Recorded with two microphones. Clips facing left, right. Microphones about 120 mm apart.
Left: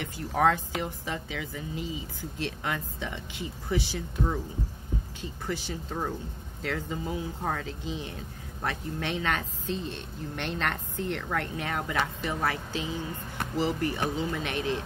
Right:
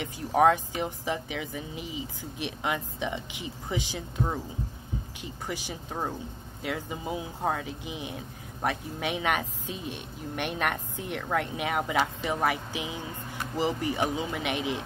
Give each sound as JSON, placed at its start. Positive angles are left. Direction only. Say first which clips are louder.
{"t": 0.0, "sound": "speech", "louder": "right 3 dB", "side_deg": -15}